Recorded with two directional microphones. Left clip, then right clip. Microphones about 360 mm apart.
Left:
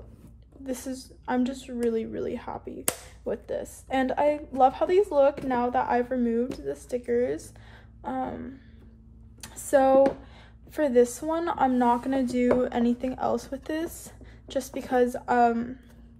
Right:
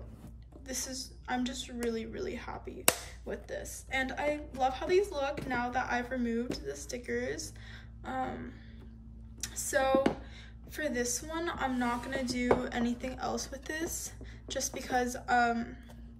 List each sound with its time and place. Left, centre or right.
0.7 s a woman's voice: centre
9.4 s a sound: centre
10.7 s a woman's voice: centre